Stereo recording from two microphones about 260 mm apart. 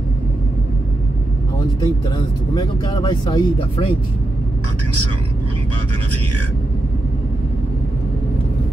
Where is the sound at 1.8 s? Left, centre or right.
Centre.